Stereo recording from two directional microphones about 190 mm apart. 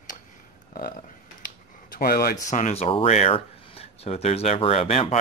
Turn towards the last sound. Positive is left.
turn(degrees=30)  # may be behind; listen again after turning